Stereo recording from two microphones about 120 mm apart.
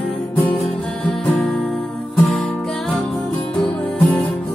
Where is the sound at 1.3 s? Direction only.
5° left (ahead or behind).